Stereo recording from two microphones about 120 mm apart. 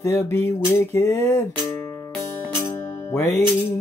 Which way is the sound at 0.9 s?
20° left (ahead or behind).